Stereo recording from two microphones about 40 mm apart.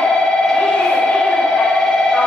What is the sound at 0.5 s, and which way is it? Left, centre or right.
Music, centre.